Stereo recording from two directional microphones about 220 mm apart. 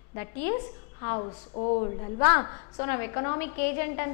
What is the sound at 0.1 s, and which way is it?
A woman's voice, 15° left (ahead or behind).